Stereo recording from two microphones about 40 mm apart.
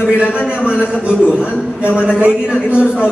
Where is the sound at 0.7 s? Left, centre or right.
Right.